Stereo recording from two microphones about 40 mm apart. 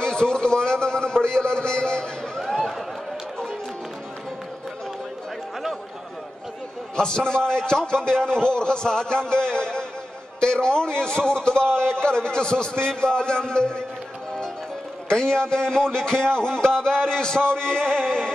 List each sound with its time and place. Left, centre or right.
0.0 s music: left
7.0 s a man's voice: centre
15.0 s a man's voice: centre